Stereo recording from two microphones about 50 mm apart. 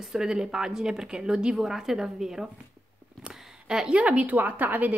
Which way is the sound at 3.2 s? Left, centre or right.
Centre.